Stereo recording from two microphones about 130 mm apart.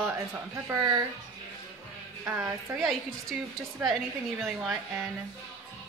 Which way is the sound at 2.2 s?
15° right (ahead or behind).